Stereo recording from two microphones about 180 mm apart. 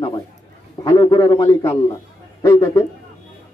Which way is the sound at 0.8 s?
20° left (ahead or behind).